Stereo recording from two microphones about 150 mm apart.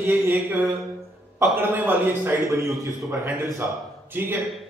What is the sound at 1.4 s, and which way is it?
A man's voice, 15° right (ahead or behind).